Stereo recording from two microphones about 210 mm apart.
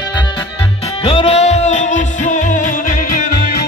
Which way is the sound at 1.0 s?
30° left (ahead or behind).